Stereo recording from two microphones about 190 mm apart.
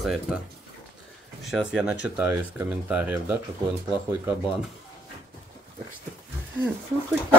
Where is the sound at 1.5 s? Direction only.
5° right (ahead or behind).